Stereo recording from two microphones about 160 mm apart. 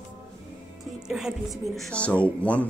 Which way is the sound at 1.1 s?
Centre (ahead or behind).